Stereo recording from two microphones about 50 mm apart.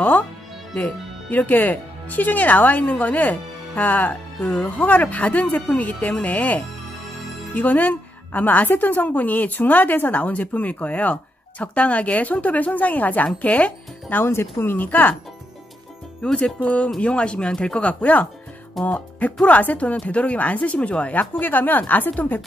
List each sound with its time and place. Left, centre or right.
0.7 s speech: left
14.2 s speech: left
16.2 s speech: centre; by 22.4 s left